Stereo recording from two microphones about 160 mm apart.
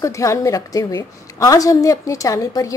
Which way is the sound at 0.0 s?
20° left (ahead or behind).